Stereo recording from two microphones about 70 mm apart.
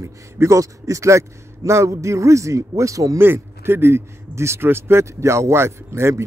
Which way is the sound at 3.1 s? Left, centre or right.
Right.